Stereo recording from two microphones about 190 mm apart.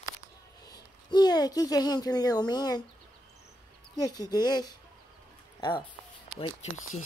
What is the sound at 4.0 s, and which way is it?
A woman's voice, 20° left (ahead or behind).